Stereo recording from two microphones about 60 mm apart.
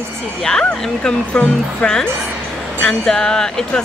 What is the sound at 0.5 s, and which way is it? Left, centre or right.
Speech, centre.